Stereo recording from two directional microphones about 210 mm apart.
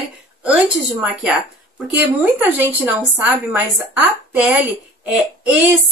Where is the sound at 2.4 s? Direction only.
5° right (ahead or behind).